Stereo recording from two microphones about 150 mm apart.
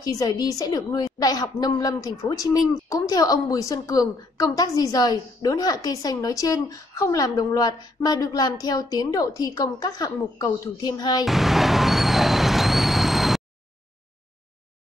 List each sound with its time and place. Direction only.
0.0 s a woman's voice: 25° left (ahead or behind)
11.2 s vehicle: centre (ahead or behind)